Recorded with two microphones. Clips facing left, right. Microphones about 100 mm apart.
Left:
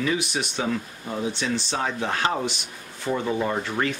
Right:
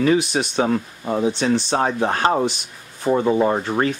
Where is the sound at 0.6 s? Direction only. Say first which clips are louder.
Right 8 dB; 45° right (ahead or behind).